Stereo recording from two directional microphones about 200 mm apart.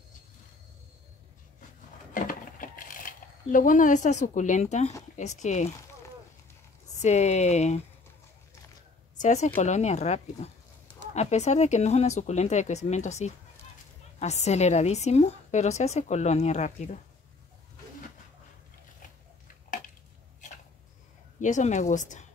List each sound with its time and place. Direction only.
2.1 s coin: 45° left (ahead or behind)
5.1 s a woman's voice: 35° left (ahead or behind)
7.0 s a woman's voice: 35° left (ahead or behind)
9.2 s a woman's voice: 35° left (ahead or behind)
21.4 s a woman's voice: 40° left (ahead or behind)